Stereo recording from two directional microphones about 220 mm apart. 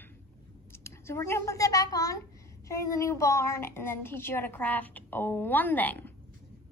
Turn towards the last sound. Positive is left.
turn(degrees=10)  # may be behind; listen again after turning